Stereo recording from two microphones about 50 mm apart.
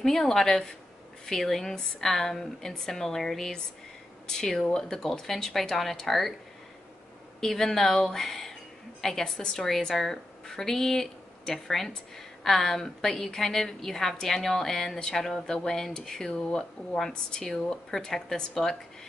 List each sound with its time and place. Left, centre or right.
0.0 s speech: centre
7.3 s speech: centre